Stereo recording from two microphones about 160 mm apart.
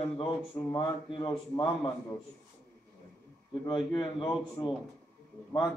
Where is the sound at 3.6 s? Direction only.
30° left (ahead or behind).